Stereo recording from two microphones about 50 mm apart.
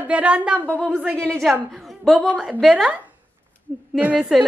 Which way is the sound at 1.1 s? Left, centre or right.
Centre.